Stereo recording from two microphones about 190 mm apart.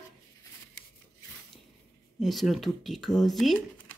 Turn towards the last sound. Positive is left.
turn(degrees=0)  # may be behind; listen again after turning